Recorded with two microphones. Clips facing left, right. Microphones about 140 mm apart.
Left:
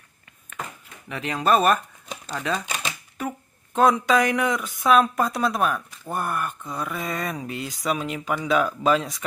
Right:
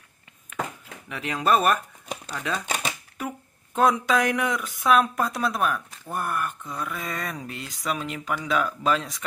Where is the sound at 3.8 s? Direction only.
Centre (ahead or behind).